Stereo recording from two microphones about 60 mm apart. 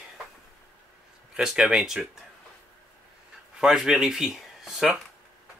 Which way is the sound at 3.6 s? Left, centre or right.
Centre.